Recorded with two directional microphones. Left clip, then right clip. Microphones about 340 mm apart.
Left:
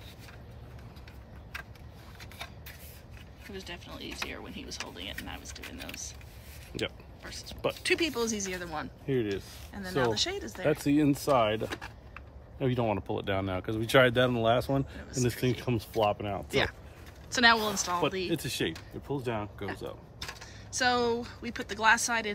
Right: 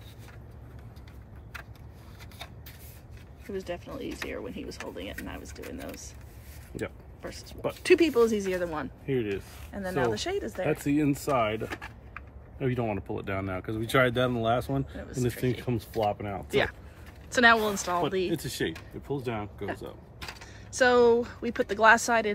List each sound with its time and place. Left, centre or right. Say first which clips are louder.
3.5 s speech: right 7 dB; centre
9.0 s speech: even; left
9.3 s speech: right 2 dB; centre
11.3 s speech: left 1 dB; left
11.7 s power windows: right 1 dB; centre
12.5 s speech: left 1 dB; left
15.0 s speech: even; centre